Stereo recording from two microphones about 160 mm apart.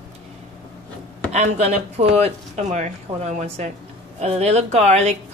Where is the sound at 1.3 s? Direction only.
45° right (ahead or behind).